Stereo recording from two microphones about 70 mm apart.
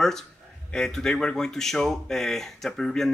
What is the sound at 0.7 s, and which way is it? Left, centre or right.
A man's voice, centre.